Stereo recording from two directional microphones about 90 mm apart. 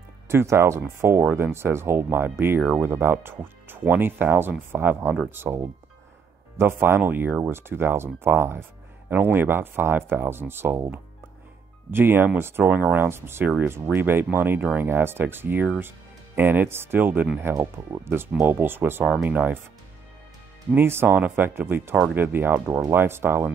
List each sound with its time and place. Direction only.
0.3 s speech: 30° right (ahead or behind)
11.9 s speech: 25° right (ahead or behind)
20.7 s speech: 25° right (ahead or behind)